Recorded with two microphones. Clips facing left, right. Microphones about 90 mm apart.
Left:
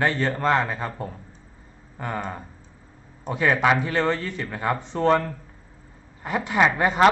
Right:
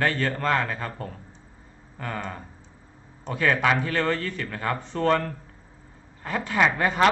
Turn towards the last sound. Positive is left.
turn(degrees=20)  # may be behind; listen again after turning